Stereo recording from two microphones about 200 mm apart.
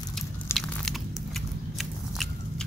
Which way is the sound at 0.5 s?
10° left (ahead or behind).